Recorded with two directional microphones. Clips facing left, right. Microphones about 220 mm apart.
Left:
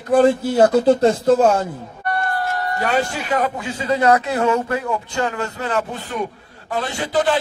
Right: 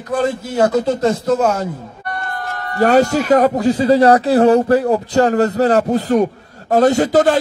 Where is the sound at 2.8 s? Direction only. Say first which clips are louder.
Right 11 dB; 40° right (ahead or behind).